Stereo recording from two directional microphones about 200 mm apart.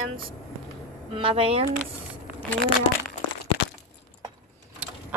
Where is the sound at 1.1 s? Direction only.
25° right (ahead or behind).